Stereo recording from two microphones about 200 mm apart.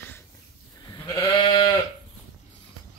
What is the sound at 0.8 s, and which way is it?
Goat, 20° left (ahead or behind).